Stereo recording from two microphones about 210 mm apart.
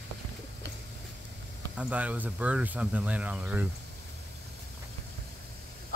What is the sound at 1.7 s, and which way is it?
Speech, 5° right (ahead or behind).